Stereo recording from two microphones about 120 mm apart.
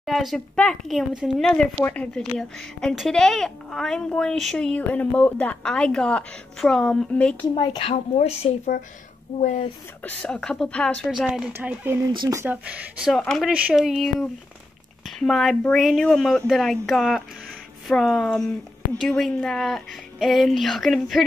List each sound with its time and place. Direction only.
0.0 s a woman's voice: centre (ahead or behind)
1.5 s a woman's voice: 10° left (ahead or behind)
7.5 s speech: 35° left (ahead or behind)
7.9 s speech: 60° left (ahead or behind)
10.0 s speech: 10° left (ahead or behind)
11.1 s a woman's voice: 5° right (ahead or behind)
11.5 s speech: 15° right (ahead or behind)
12.6 s speech: 10° right (ahead or behind)
13.1 s a woman's voice: centre (ahead or behind)
13.5 s a woman's voice: 10° right (ahead or behind)